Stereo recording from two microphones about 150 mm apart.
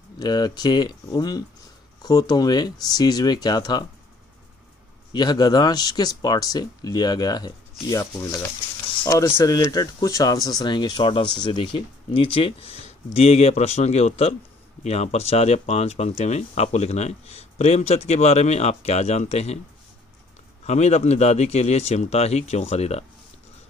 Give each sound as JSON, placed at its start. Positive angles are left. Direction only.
{"t": 0.2, "sound": "speech", "side_deg": 25}
{"t": 5.1, "sound": "speech", "side_deg": 30}
{"t": 20.6, "sound": "speech", "side_deg": 45}